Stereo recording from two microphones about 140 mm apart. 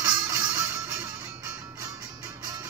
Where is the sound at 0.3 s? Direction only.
20° right (ahead or behind).